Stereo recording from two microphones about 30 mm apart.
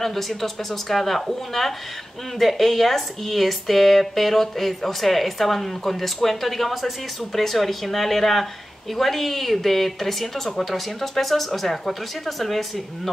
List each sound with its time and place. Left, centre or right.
0.0 s speech: centre